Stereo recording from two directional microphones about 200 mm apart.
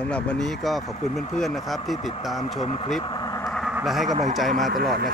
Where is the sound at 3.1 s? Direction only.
20° left (ahead or behind).